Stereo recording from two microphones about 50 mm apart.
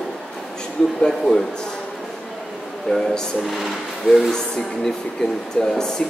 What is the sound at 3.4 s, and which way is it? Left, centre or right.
A man's voice, centre.